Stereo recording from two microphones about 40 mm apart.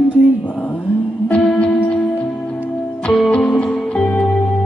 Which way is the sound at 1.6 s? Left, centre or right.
Left.